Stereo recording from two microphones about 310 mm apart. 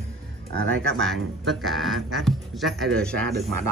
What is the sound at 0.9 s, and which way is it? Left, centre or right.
Speech, centre.